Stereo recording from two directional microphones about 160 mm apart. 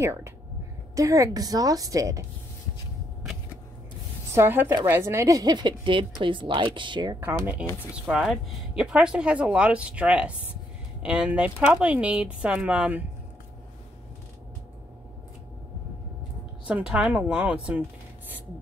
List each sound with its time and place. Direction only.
0.0 s speech: 15° right (ahead or behind)
4.4 s speech: 15° right (ahead or behind)
7.2 s speech: 10° right (ahead or behind)
16.6 s speech: 5° right (ahead or behind)